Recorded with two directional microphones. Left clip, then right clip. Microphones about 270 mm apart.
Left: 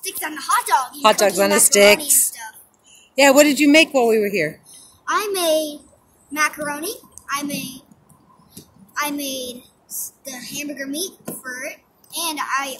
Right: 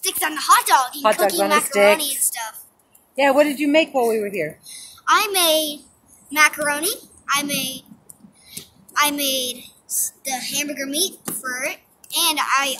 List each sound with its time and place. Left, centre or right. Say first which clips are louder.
0.0 s a woman's voice: right 5 dB; centre
1.7 s speech: left 3 dB; left
2.0 s a woman's voice: left 2 dB; centre
3.2 s speech: left 4 dB; left
4.6 s a sound: right 6 dB; centre
6.3 s a child's voice: right 4 dB; centre
8.5 s a sound: right 8 dB; centre
10.2 s a child's voice: right 5 dB; centre